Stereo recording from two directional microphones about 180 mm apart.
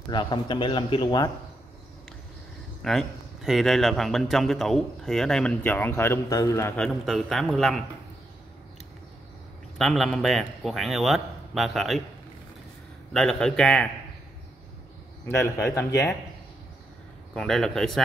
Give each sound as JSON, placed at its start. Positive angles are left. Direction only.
{"t": 0.1, "sound": "a man's voice", "side_deg": 25}
{"t": 2.8, "sound": "a man's voice", "side_deg": 0}
{"t": 6.8, "sound": "a man's voice", "side_deg": 0}
{"t": 9.8, "sound": "a man's voice", "side_deg": 0}
{"t": 13.1, "sound": "a man's voice", "side_deg": 5}
{"t": 15.2, "sound": "speech", "side_deg": 15}
{"t": 17.3, "sound": "a man's voice", "side_deg": 0}